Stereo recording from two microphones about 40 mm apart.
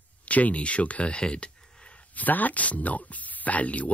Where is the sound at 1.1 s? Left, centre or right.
Left.